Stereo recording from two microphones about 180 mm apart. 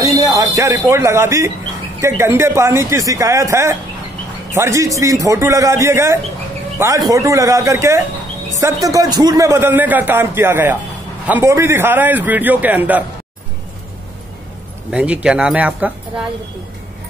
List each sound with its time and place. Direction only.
0.0 s a man's voice: 20° right (ahead or behind)
14.9 s a man's voice: 5° right (ahead or behind)